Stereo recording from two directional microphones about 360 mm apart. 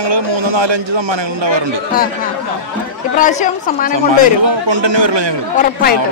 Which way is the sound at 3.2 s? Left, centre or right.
Left.